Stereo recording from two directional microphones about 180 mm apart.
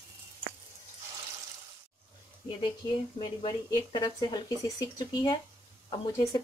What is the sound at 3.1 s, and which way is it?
Speech, 25° left (ahead or behind).